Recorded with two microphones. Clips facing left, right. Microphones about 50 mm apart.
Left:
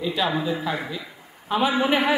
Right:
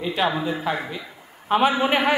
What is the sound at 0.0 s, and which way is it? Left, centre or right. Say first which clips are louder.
A man's voice: right 1 dB; right.